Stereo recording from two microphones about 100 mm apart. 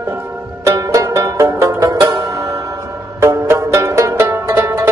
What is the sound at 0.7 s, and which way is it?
Music, 35° right (ahead or behind).